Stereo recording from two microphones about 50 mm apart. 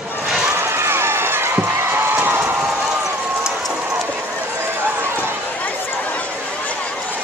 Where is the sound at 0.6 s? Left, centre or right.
Right.